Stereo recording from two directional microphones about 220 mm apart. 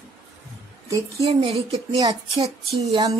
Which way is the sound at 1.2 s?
25° right (ahead or behind).